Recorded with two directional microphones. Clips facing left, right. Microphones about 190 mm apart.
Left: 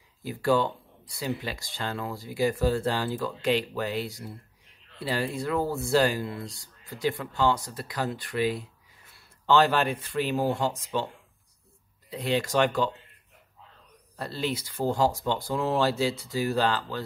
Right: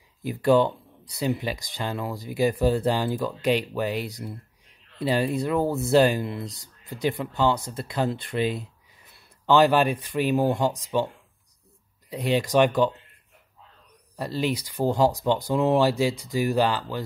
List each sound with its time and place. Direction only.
0.2 s speech: 20° right (ahead or behind)
12.1 s speech: 15° right (ahead or behind)
14.1 s speech: 15° right (ahead or behind)